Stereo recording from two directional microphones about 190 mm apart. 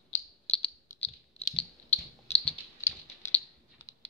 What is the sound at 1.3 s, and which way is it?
Typing, 30° left (ahead or behind).